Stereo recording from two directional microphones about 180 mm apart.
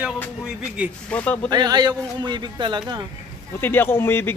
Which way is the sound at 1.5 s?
25° right (ahead or behind).